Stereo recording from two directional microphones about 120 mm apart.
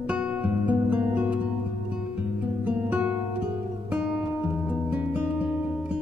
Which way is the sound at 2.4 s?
10° right (ahead or behind).